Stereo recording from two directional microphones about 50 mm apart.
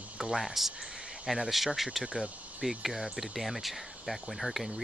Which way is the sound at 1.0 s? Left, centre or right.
Centre.